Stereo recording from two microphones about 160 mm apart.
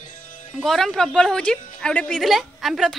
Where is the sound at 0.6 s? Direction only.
5° left (ahead or behind).